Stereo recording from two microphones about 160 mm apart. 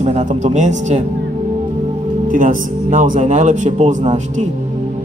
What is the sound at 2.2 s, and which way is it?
Speech, 55° right (ahead or behind).